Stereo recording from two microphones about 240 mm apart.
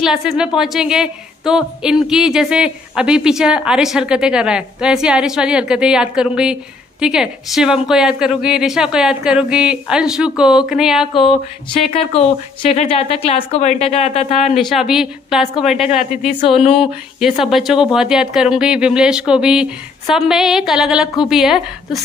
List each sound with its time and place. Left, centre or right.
0.0 s a woman's voice: centre
11.9 s speech: left
14.5 s a woman's voice: centre
16.3 s speech: left
16.8 s a woman's voice: centre